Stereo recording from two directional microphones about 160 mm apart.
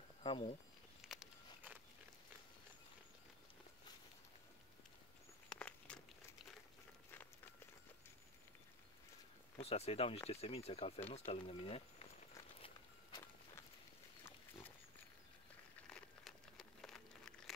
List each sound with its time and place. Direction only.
0.2 s speech: 30° left (ahead or behind)
1.0 s a sound: centre (ahead or behind)
5.5 s walk: 10° left (ahead or behind)
7.1 s run: 10° left (ahead or behind)
9.6 s speech: 40° left (ahead or behind)
12.5 s walk: 35° left (ahead or behind)
15.9 s crumpling: centre (ahead or behind)